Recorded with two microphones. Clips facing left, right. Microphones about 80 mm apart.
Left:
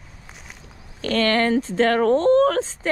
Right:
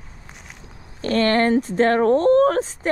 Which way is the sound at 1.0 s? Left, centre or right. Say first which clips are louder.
Right 2 dB; right.